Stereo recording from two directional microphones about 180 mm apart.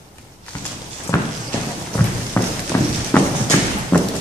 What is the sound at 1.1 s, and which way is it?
Clip-clop, 15° left (ahead or behind).